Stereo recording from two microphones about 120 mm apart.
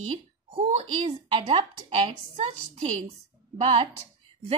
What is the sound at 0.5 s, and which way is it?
A woman's voice, 50° right (ahead or behind).